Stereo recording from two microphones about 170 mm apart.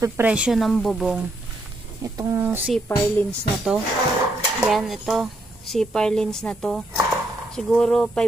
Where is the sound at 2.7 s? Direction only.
10° left (ahead or behind).